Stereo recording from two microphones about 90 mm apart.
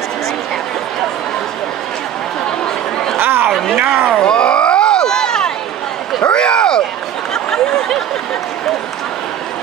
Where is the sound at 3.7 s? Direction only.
10° right (ahead or behind).